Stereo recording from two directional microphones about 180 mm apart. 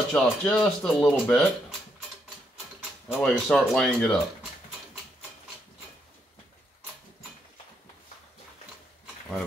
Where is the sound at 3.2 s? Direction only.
Centre (ahead or behind).